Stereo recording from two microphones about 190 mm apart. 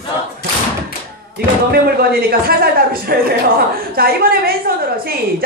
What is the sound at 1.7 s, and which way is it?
Speech, 50° right (ahead or behind).